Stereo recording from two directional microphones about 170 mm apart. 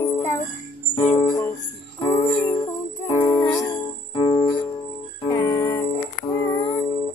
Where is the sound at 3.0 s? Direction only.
15° left (ahead or behind).